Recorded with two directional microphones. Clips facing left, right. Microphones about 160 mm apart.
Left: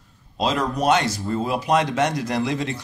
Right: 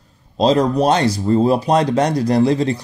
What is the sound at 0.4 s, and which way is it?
Speech, 35° right (ahead or behind).